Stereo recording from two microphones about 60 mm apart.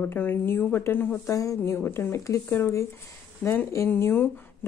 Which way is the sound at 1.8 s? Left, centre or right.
Left.